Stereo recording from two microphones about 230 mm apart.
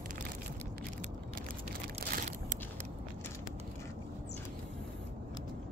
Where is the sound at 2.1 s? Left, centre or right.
Right.